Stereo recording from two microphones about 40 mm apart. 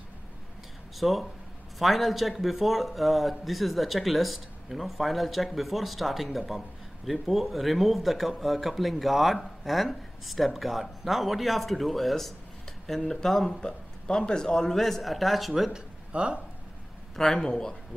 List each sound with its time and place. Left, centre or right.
0.9 s a man's voice: centre
16.1 s speech: right
17.1 s a man's voice: centre